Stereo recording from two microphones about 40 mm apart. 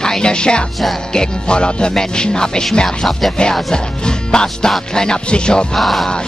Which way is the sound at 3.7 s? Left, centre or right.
Centre.